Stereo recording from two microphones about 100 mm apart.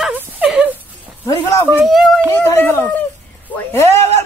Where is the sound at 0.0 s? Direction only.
10° right (ahead or behind).